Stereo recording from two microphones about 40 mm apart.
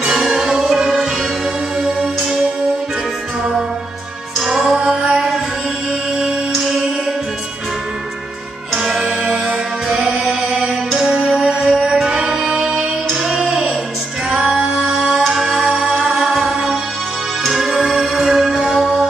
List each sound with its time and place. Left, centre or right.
0.0 s music: centre
4.4 s music: centre
8.7 s music: centre